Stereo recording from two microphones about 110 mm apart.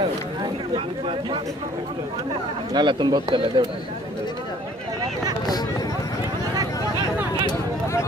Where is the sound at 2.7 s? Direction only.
40° right (ahead or behind).